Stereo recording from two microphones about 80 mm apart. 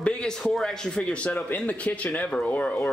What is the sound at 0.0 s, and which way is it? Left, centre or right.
A man's voice, centre.